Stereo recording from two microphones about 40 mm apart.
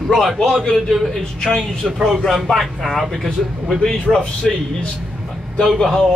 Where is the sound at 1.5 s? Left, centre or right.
Left.